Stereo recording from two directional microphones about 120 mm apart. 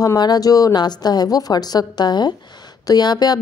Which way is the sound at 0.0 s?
30° left (ahead or behind).